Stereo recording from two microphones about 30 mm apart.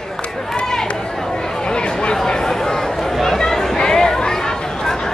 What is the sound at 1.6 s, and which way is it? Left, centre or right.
Chatter, left.